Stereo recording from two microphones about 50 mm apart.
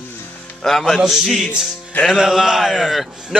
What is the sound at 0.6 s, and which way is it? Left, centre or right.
Speech, centre.